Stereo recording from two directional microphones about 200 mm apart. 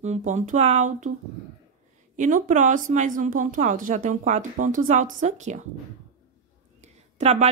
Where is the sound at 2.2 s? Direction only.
40° right (ahead or behind).